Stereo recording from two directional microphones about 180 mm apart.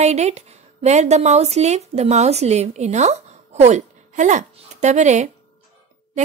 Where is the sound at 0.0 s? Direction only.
40° right (ahead or behind).